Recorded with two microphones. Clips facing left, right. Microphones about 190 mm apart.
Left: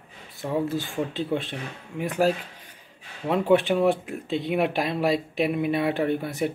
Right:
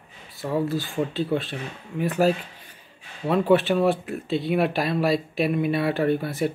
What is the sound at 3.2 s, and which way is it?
Speech, 15° left (ahead or behind).